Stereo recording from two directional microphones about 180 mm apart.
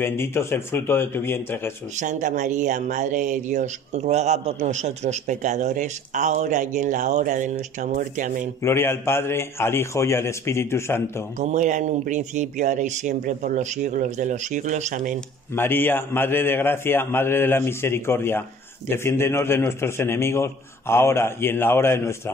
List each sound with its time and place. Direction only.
0.0 s a man's voice: 15° left (ahead or behind)
2.0 s speech: 45° right (ahead or behind)
8.6 s a man's voice: 15° left (ahead or behind)
11.3 s speech: 40° right (ahead or behind)
15.5 s a man's voice: 10° left (ahead or behind)